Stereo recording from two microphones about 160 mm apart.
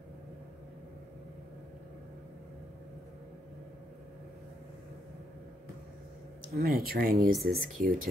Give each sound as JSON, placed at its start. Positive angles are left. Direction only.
{"t": 6.5, "sound": "speech", "side_deg": -65}